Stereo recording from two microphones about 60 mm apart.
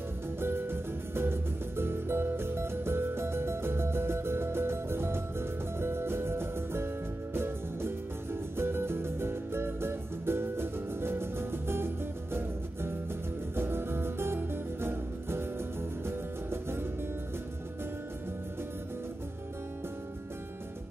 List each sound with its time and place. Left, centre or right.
0.4 s music: right